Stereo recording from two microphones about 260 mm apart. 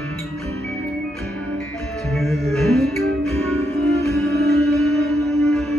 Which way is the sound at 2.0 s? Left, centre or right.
Centre.